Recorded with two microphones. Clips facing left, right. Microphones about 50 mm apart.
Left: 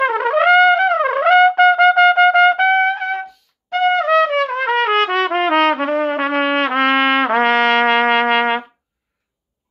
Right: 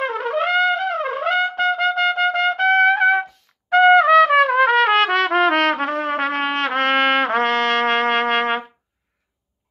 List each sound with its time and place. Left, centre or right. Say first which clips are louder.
0.0 s trumpet: left 7 dB; left
2.9 s trumpet: right 5 dB; centre; by 8.6 s left